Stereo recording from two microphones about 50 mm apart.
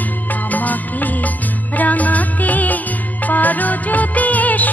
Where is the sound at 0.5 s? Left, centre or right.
Left.